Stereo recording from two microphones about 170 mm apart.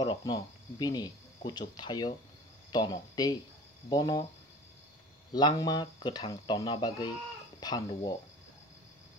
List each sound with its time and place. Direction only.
0.0 s speech: 25° left (ahead or behind)
5.3 s speech: 25° left (ahead or behind)